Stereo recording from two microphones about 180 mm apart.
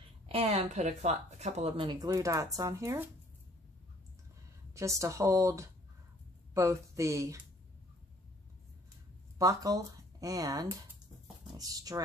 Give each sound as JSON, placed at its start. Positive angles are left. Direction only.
{"t": 0.3, "sound": "speech", "side_deg": -35}
{"t": 4.7, "sound": "speech", "side_deg": -15}
{"t": 9.4, "sound": "speech", "side_deg": -20}